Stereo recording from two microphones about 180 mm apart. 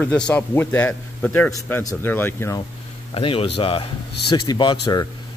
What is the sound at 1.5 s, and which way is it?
Speech, 20° left (ahead or behind).